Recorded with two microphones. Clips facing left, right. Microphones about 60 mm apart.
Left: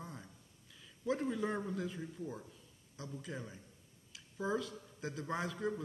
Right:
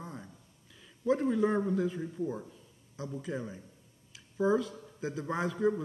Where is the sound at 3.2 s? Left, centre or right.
Centre.